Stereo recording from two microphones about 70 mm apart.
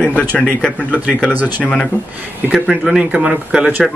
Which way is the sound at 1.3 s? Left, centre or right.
Right.